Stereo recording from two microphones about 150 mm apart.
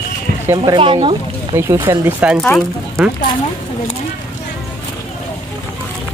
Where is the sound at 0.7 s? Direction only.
35° right (ahead or behind).